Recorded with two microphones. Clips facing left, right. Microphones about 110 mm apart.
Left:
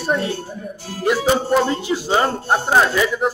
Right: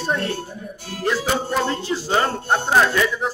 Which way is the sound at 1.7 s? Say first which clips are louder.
Left 3 dB; 15° left (ahead or behind).